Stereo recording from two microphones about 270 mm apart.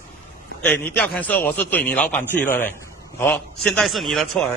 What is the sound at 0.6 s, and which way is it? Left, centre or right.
A man's voice, centre.